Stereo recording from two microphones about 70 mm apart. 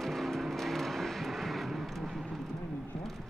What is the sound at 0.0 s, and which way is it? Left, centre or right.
Vehicle, centre.